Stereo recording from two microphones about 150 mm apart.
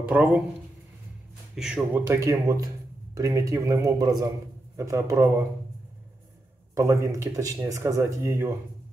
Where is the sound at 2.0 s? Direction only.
20° right (ahead or behind).